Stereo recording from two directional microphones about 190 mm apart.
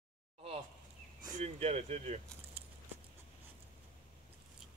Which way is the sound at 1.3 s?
35° right (ahead or behind).